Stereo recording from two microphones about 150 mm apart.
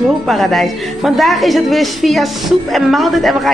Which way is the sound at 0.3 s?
Centre (ahead or behind).